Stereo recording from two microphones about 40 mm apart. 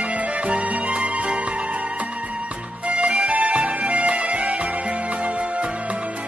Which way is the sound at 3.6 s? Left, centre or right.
Right.